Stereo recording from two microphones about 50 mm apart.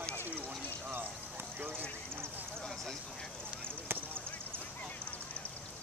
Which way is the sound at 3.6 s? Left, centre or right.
Right.